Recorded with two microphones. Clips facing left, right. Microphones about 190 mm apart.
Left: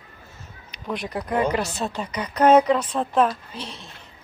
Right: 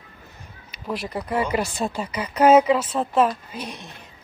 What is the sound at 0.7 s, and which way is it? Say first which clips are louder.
Speech: even; 5° right (ahead or behind).